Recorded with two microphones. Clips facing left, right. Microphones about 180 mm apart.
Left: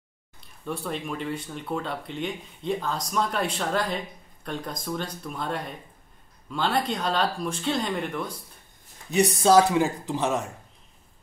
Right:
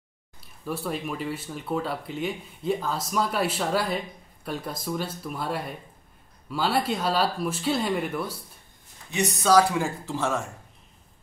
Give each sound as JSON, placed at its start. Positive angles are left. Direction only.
{"t": 0.4, "sound": "speech", "side_deg": -5}
{"t": 9.1, "sound": "speech", "side_deg": 30}